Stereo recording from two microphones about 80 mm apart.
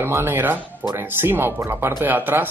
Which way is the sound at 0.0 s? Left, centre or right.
Right.